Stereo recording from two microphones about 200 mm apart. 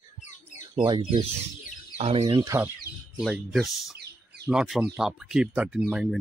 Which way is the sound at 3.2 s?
Centre (ahead or behind).